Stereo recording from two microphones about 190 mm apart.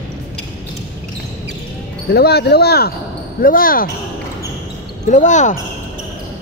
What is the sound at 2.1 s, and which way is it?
Speech, 55° left (ahead or behind).